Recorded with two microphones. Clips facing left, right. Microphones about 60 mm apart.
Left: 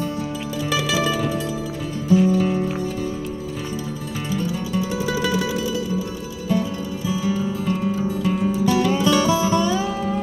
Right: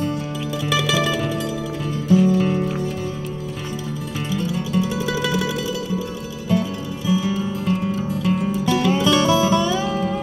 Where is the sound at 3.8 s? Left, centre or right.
Centre.